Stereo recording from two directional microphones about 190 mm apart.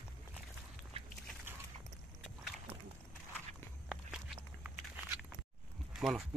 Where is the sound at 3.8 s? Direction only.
5° right (ahead or behind).